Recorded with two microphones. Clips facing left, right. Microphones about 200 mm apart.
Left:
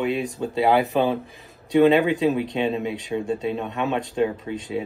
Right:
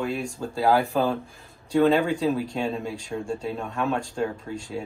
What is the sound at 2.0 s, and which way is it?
Speech, 20° left (ahead or behind).